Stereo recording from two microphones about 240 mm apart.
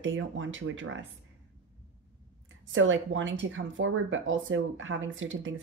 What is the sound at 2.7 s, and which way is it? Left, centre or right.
Speech, right.